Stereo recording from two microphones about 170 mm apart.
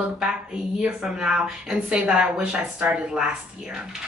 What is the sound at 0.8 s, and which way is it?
Speech, 5° right (ahead or behind).